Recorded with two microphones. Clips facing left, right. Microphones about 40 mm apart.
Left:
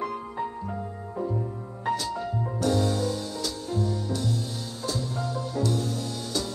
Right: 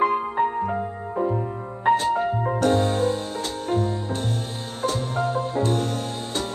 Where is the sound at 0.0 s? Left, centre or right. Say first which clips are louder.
Right 10 dB; right.